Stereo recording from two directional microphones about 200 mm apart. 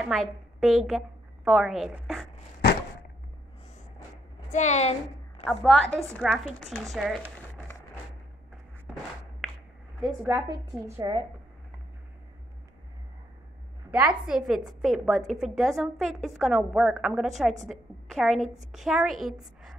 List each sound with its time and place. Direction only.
0.0 s a woman's voice: centre (ahead or behind)
4.5 s a woman's voice: 35° left (ahead or behind)
5.4 s a woman's voice: 5° left (ahead or behind)
8.9 s a sound: centre (ahead or behind)
10.0 s a woman's voice: 5° right (ahead or behind)
13.8 s a woman's voice: 5° right (ahead or behind)